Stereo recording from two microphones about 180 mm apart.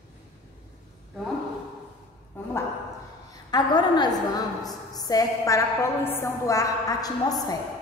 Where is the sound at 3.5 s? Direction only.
25° left (ahead or behind).